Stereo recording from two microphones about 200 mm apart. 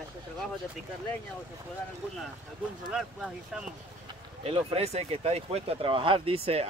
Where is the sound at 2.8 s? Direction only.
5° right (ahead or behind).